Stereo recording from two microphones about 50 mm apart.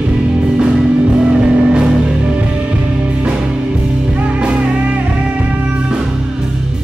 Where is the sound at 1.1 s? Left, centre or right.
Centre.